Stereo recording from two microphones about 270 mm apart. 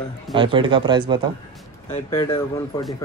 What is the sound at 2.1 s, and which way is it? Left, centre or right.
Speech, centre.